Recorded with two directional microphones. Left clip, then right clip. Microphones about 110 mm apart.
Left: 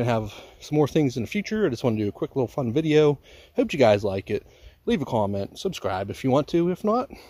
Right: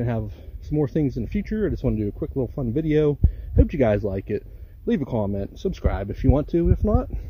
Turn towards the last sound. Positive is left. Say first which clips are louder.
# left 1 dB
turn(degrees=40)  # may be behind; listen again after turning